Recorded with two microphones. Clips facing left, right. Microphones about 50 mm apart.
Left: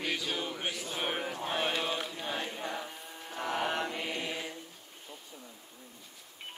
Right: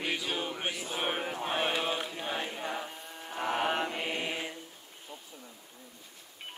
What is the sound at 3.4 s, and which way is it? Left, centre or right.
Mantra, right.